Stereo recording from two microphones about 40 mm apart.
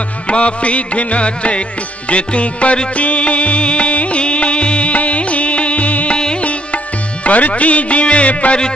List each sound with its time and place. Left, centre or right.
0.3 s music: left
6.1 s music: left
6.4 s music: left